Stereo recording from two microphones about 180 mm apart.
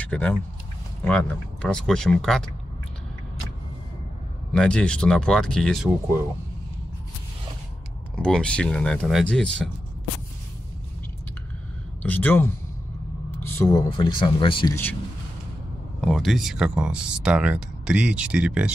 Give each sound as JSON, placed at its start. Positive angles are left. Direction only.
{"t": 0.0, "sound": "speech", "side_deg": 10}
{"t": 4.6, "sound": "speech", "side_deg": 5}
{"t": 8.2, "sound": "speech", "side_deg": 5}
{"t": 12.0, "sound": "speech", "side_deg": 10}
{"t": 13.4, "sound": "a sound", "side_deg": 15}
{"t": 13.8, "sound": "speech", "side_deg": 25}
{"t": 16.0, "sound": "speech", "side_deg": 0}